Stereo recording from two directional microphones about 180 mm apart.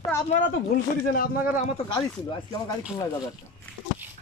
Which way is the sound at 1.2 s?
45° left (ahead or behind).